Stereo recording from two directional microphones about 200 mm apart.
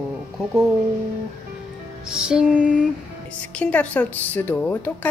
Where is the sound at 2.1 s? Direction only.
5° right (ahead or behind).